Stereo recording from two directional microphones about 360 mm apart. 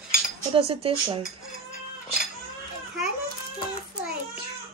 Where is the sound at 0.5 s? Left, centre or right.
Centre.